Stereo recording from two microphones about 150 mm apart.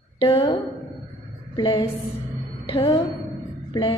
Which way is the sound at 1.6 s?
30° left (ahead or behind).